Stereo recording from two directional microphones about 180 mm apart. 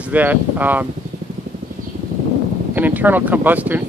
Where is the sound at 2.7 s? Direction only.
10° right (ahead or behind).